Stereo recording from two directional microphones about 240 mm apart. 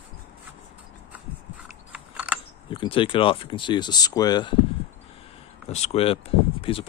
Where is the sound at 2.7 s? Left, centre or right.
Left.